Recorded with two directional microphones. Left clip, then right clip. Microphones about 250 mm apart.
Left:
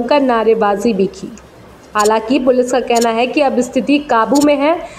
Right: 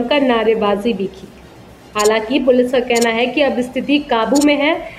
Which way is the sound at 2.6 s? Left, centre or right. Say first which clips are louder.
Left 2 dB; centre.